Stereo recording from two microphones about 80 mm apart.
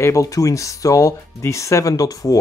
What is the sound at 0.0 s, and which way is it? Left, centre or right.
Speech, left.